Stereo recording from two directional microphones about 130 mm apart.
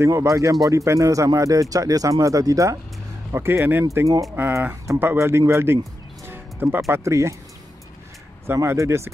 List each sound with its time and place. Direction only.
0.0 s speech: 25° right (ahead or behind)
6.2 s music: 15° right (ahead or behind)
6.9 s speech: 25° right (ahead or behind)
8.5 s speech: 20° right (ahead or behind)